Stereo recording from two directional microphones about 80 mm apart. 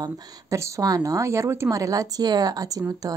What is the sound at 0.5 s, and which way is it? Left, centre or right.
A woman's voice, right.